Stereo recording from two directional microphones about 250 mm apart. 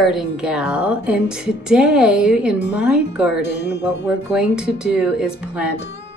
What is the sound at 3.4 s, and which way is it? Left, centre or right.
Music, left.